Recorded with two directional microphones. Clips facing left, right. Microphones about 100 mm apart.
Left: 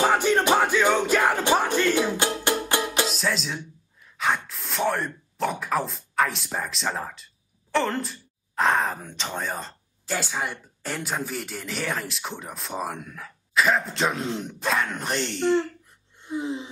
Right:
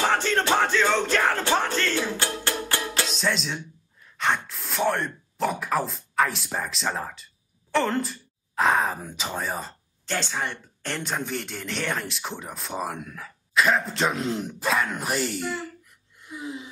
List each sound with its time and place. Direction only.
0.0 s music: 10° left (ahead or behind)
3.1 s speech: centre (ahead or behind)
10.0 s speech: 5° left (ahead or behind)
16.2 s wheeze: 30° left (ahead or behind)